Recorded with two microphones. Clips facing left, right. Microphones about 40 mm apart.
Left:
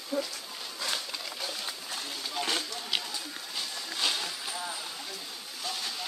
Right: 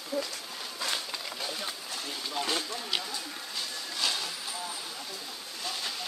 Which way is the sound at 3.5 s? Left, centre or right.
Centre.